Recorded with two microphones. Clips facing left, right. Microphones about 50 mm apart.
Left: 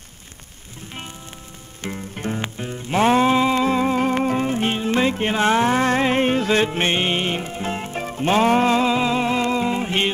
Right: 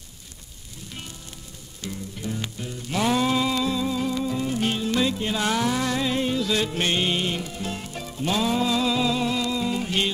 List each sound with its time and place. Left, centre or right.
1.8 s music: left